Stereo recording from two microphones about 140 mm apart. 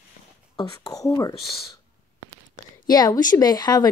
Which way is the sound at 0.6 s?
25° left (ahead or behind).